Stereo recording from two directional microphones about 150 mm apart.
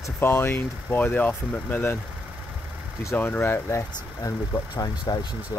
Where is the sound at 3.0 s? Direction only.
15° left (ahead or behind).